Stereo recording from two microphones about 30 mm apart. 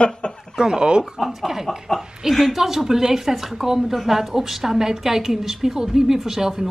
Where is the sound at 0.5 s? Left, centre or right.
Right.